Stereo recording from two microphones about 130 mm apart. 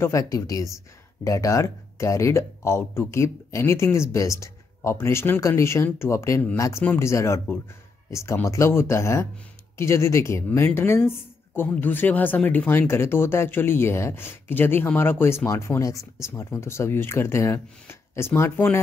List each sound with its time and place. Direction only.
0.0 s speech: 25° left (ahead or behind)